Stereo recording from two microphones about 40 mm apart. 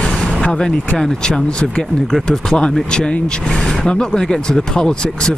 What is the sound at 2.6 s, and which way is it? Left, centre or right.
Speech, left.